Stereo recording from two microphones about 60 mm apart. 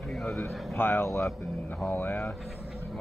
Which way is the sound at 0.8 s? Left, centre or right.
Left.